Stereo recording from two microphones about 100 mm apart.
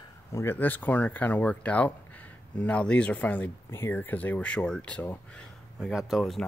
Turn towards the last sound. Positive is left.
turn(degrees=0)  # may be behind; listen again after turning